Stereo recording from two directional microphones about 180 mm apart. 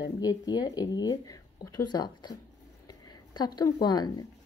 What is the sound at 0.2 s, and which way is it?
Speech, 20° left (ahead or behind).